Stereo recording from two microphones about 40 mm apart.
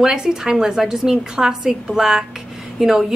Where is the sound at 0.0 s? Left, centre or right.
Centre.